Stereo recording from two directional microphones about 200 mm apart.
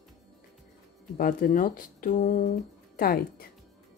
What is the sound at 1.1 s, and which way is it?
Speech, 45° left (ahead or behind).